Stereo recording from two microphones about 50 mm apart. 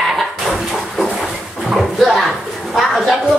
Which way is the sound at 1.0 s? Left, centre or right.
Centre.